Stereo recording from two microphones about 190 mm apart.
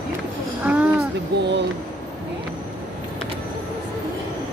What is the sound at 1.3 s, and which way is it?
Speech, 60° right (ahead or behind).